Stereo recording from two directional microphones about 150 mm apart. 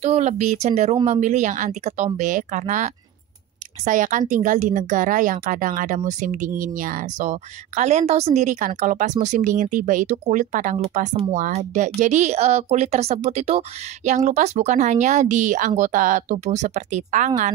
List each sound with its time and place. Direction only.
0.0 s a woman's voice: 50° right (ahead or behind)